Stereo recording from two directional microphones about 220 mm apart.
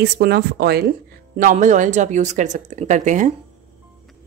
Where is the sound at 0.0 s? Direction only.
45° right (ahead or behind).